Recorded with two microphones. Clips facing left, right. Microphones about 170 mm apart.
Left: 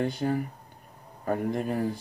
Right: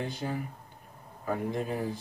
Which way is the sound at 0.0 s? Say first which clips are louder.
Left 7 dB; 50° left (ahead or behind).